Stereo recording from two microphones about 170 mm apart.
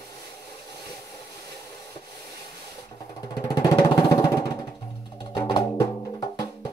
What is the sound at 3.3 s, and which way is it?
Music, 20° left (ahead or behind).